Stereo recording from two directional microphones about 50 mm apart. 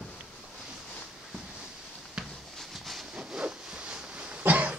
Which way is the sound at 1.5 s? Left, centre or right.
Centre.